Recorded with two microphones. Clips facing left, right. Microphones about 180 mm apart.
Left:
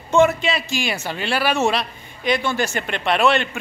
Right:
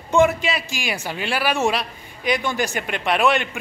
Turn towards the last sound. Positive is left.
turn(degrees=-15)  # may be behind; listen again after turning